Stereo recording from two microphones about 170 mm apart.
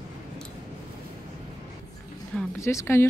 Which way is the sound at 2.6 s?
15° left (ahead or behind).